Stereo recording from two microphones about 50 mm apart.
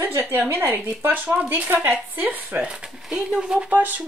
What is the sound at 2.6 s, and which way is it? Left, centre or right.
Speech, centre.